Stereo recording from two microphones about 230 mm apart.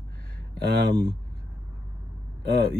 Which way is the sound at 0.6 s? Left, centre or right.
Right.